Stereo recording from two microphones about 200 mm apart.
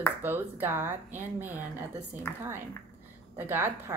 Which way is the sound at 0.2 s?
10° right (ahead or behind).